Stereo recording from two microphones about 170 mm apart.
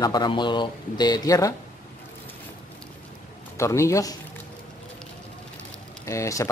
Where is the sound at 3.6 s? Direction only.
15° left (ahead or behind).